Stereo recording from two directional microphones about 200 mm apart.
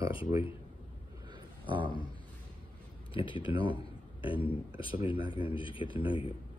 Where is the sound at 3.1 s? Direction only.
25° left (ahead or behind).